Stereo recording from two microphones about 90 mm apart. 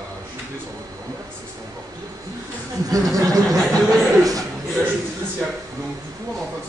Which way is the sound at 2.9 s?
40° right (ahead or behind).